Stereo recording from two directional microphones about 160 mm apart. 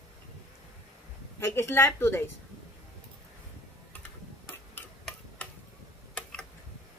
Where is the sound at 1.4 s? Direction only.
15° left (ahead or behind).